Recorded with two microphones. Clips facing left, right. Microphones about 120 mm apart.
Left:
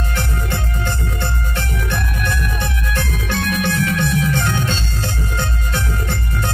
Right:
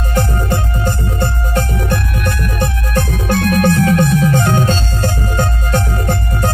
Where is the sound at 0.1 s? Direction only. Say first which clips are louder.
Right 10 dB; 40° right (ahead or behind).